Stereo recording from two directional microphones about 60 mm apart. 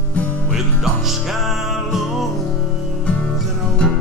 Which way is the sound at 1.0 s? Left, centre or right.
Centre.